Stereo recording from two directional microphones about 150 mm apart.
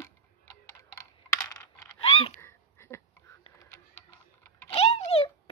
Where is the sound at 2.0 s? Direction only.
40° left (ahead or behind).